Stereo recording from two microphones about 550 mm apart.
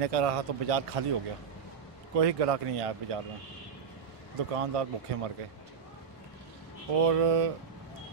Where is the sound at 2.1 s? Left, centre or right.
Right.